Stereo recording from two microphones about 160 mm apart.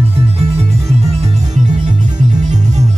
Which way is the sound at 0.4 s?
40° right (ahead or behind).